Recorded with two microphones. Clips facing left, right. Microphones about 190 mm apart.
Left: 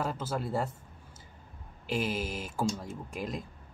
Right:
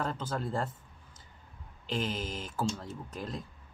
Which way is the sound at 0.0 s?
10° left (ahead or behind).